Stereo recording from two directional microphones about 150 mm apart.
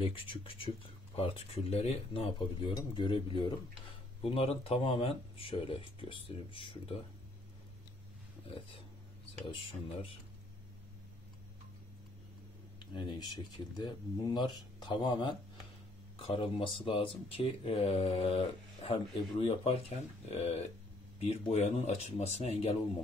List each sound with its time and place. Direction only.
0.0 s speech: 35° left (ahead or behind)
4.2 s speech: 40° left (ahead or behind)
12.7 s speech: 30° left (ahead or behind)